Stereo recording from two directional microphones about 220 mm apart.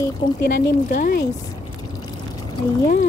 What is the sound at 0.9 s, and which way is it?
Speech, 40° left (ahead or behind).